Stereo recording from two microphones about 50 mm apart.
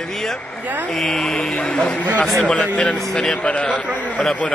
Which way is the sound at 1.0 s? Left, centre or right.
Centre.